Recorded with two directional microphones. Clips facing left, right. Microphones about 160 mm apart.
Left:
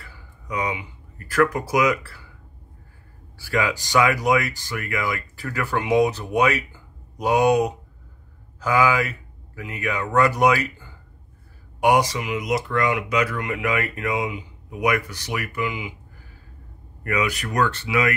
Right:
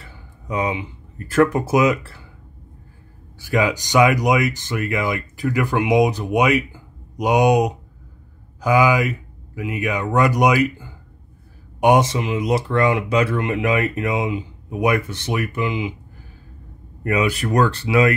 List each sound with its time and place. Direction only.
0.0 s speech: 25° right (ahead or behind)
3.3 s speech: 20° right (ahead or behind)
17.0 s speech: 25° right (ahead or behind)